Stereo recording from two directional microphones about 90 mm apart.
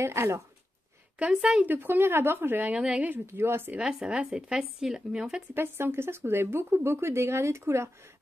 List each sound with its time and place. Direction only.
0.0 s speech: 30° right (ahead or behind)
1.2 s speech: 10° right (ahead or behind)
1.7 s speech: 25° right (ahead or behind)
2.8 s speech: 10° right (ahead or behind)
3.1 s speech: 25° right (ahead or behind)
3.7 s speech: 10° right (ahead or behind)
5.5 s speech: 25° right (ahead or behind)